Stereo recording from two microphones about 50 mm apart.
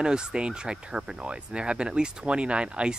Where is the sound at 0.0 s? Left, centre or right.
Centre.